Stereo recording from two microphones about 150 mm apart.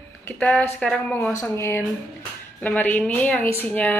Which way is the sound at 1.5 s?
15° left (ahead or behind).